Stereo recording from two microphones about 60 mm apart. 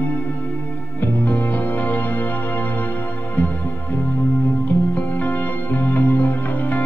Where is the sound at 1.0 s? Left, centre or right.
Left.